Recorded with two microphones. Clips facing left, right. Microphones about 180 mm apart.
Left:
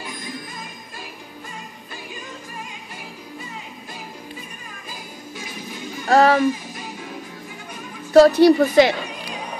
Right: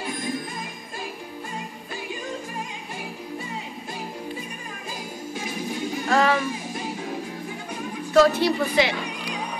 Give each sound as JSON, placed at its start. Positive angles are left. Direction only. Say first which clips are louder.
{"t": 6.0, "sound": "music", "louder": "left 6 dB", "side_deg": 40}
{"t": 8.1, "sound": "a woman's voice", "louder": "left 7 dB", "side_deg": 40}